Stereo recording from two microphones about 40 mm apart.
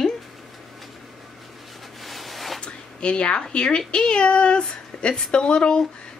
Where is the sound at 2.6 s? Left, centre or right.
Left.